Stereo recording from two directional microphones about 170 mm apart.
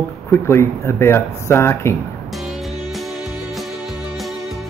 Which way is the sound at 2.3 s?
Centre (ahead or behind).